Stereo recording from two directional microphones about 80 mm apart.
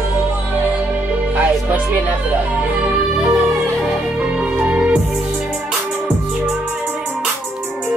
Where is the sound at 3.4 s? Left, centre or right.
Centre.